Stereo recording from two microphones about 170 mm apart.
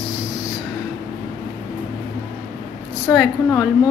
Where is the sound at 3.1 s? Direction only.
Centre (ahead or behind).